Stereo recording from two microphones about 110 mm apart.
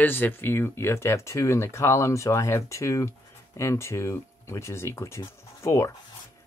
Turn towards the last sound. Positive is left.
turn(degrees=25)  # may be behind; listen again after turning